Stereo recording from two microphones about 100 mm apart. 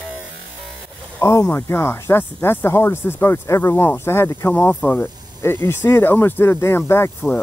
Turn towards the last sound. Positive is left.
turn(degrees=25)  # may be behind; listen again after turning